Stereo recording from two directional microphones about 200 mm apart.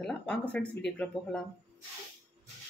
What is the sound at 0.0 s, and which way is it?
Speech, 5° left (ahead or behind).